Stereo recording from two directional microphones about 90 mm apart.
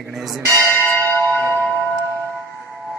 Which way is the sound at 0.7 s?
25° left (ahead or behind).